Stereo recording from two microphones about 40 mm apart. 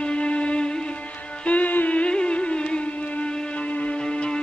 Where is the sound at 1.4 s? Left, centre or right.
Left.